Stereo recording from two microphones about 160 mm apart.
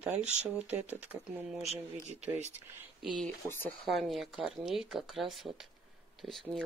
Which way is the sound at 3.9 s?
Centre (ahead or behind).